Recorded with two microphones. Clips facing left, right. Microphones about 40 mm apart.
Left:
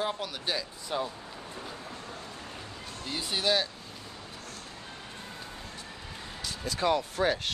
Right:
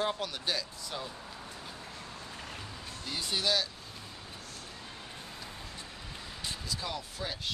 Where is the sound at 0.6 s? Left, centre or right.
Left.